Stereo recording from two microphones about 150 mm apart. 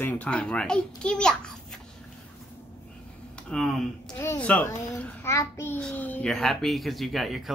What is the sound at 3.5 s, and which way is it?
Speech, centre (ahead or behind).